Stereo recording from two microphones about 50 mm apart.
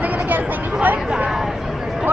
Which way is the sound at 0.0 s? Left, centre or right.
Right.